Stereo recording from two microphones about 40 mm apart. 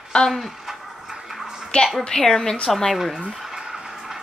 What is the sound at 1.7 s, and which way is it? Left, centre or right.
Speech, left.